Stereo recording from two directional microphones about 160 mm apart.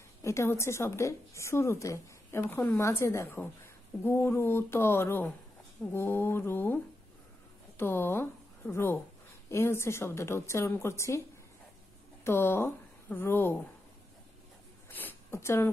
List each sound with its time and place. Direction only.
0.2 s a woman's voice: 15° left (ahead or behind)
12.3 s a woman's voice: 15° left (ahead or behind)
14.9 s a sound: 10° left (ahead or behind)